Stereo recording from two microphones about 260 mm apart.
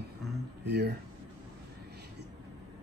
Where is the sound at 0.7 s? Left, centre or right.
Right.